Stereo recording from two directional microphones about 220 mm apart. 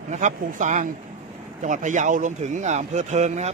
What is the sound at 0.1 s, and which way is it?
A man's voice, 35° right (ahead or behind).